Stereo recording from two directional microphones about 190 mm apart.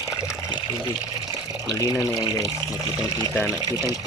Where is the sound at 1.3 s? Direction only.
15° right (ahead or behind).